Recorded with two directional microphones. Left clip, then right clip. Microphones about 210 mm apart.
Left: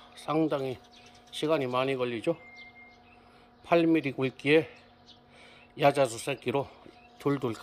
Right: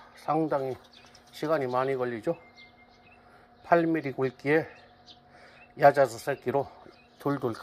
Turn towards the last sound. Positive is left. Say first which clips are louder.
# even
turn(degrees=20)  # may be behind; listen again after turning